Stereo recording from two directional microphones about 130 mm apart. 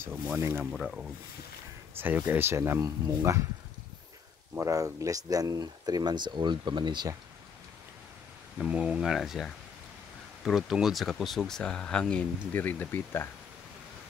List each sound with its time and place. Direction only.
0.0 s speech: 20° right (ahead or behind)
0.7 s speech: 5° right (ahead or behind)
2.0 s speech: 15° right (ahead or behind)
4.6 s speech: 25° right (ahead or behind)
8.5 s speech: 10° right (ahead or behind); by 13.3 s 20° left (ahead or behind)